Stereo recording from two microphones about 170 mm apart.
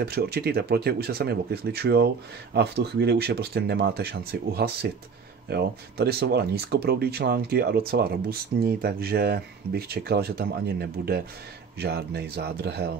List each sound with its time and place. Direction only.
0.0 s speech: 70° right (ahead or behind)